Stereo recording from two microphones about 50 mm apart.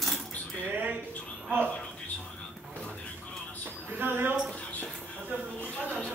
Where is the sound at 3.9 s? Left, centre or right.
Right.